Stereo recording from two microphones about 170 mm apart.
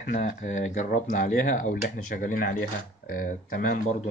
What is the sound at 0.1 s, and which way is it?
Speech, 45° left (ahead or behind).